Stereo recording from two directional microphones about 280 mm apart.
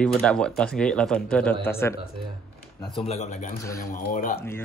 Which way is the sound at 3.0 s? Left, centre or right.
Left.